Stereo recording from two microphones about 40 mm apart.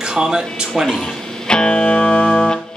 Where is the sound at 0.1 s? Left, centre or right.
Centre.